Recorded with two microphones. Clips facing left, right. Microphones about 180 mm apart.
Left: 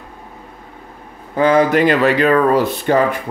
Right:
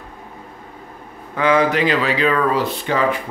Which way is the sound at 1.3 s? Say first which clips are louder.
Left 4 dB; 40° left (ahead or behind).